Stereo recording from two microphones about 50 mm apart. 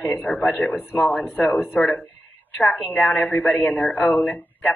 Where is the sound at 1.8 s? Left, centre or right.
Left.